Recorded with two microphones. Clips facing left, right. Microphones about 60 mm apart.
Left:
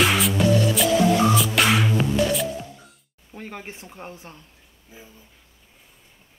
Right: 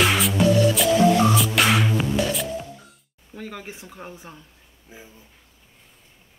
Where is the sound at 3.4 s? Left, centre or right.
Left.